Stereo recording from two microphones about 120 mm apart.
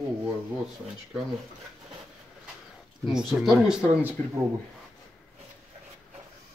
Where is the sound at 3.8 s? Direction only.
15° right (ahead or behind).